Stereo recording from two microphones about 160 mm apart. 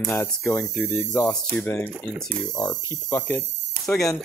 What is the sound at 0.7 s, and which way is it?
Speech, centre (ahead or behind).